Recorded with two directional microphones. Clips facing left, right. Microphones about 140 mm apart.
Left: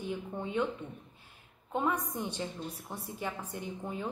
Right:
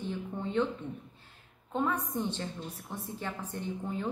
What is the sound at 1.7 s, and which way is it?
A woman's voice, 15° left (ahead or behind).